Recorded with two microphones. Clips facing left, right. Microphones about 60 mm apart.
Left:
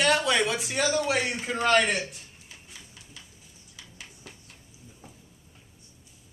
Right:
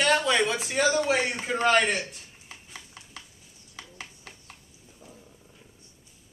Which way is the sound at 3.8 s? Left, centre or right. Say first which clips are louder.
Right 4 dB; right.